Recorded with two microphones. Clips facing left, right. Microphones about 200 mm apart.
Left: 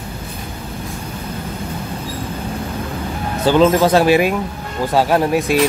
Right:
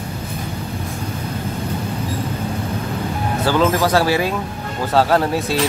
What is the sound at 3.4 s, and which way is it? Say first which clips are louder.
Speech: left 5 dB; 20° left (ahead or behind).